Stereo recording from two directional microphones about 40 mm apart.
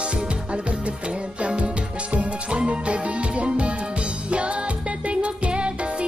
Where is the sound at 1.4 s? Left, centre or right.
Right.